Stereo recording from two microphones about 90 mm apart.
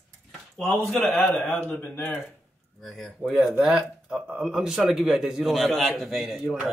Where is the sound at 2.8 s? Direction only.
5° left (ahead or behind).